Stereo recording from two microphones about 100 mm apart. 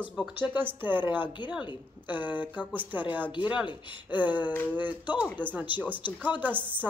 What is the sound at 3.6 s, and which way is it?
Speech, 55° left (ahead or behind).